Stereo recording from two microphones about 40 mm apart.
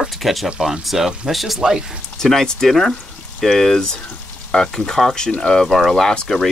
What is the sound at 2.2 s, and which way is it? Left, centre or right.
Speech, centre.